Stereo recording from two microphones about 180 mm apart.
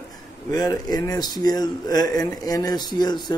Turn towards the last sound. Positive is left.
turn(degrees=25)  # may be behind; listen again after turning